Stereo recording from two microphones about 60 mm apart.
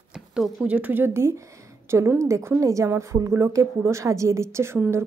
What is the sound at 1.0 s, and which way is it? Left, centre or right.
A woman's voice, right.